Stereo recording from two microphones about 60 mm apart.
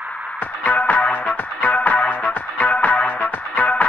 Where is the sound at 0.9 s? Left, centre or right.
Left.